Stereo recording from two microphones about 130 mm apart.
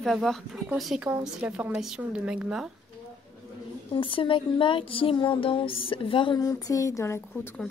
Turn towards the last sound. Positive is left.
turn(degrees=20)  # may be behind; listen again after turning